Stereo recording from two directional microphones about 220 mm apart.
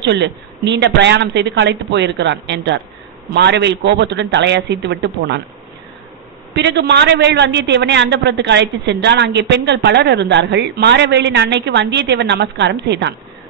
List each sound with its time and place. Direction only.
0.0 s a man's voice: 50° right (ahead or behind)
6.5 s a man's voice: 50° right (ahead or behind)